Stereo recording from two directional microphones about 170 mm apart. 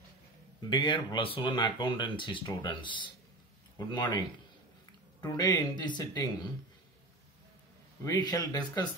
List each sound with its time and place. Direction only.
0.6 s speech: 25° left (ahead or behind)
8.0 s speech: 20° left (ahead or behind)